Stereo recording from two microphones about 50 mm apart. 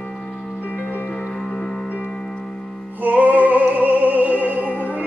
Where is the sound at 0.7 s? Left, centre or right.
Left.